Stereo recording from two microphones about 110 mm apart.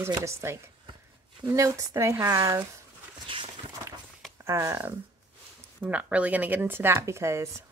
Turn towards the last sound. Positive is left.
turn(degrees=-25)  # may be behind; listen again after turning